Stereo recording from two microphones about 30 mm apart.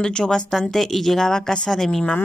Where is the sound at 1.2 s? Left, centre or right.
Centre.